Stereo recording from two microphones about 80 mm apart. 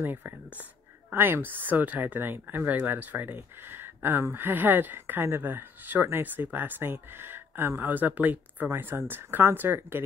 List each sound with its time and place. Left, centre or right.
0.0 s speech: right